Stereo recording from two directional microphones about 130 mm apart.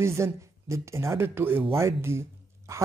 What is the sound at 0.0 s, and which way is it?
Speech, 20° right (ahead or behind).